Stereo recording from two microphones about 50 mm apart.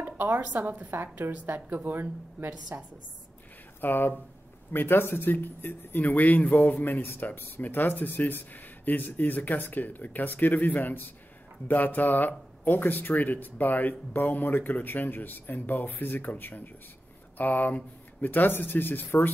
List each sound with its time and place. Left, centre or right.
0.0 s a sound: right
0.4 s a woman's voice: right
3.8 s speech: left